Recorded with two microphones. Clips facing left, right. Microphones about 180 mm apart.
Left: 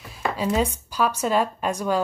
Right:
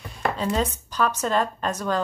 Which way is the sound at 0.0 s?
5° left (ahead or behind).